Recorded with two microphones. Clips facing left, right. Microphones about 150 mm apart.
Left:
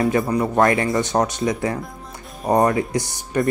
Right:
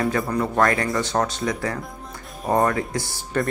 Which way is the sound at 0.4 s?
25° left (ahead or behind).